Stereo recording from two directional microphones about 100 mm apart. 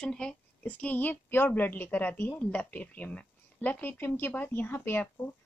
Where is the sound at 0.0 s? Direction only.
10° left (ahead or behind).